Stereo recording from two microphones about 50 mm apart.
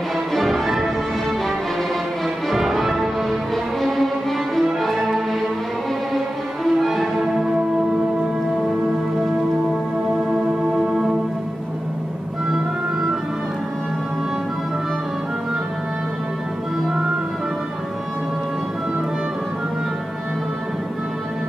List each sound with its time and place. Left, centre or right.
0.3 s music: centre
2.5 s music: centre
6.6 s music: centre
10.2 s music: centre
10.7 s music: centre